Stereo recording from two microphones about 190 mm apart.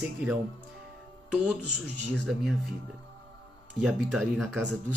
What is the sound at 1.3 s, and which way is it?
Speech, 5° right (ahead or behind).